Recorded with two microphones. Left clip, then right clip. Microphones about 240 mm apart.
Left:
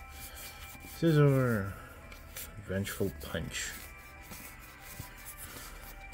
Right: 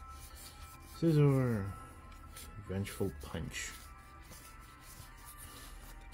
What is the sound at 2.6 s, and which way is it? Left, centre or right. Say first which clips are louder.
Speech: left 4 dB; centre.